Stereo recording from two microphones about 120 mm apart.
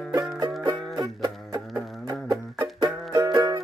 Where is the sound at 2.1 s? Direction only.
30° right (ahead or behind).